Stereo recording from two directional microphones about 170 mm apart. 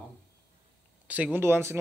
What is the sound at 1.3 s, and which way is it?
Speech, 15° right (ahead or behind).